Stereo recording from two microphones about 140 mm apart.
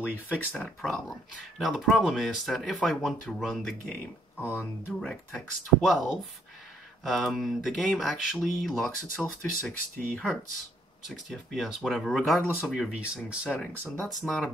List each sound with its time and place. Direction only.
0.3 s speech: 10° left (ahead or behind)
4.4 s speech: 15° left (ahead or behind)
5.0 s speech: 5° left (ahead or behind)
12.5 s speech: centre (ahead or behind)
13.6 s speech: 5° left (ahead or behind)